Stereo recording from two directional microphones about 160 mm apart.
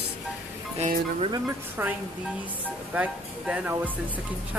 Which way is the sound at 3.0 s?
10° right (ahead or behind).